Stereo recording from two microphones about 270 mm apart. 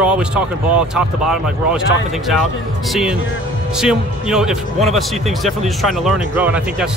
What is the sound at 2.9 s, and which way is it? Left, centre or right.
Speech, centre.